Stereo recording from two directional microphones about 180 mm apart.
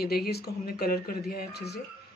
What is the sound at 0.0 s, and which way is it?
Speech, 60° left (ahead or behind).